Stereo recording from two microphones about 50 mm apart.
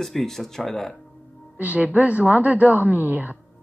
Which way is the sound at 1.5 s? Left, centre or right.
Right.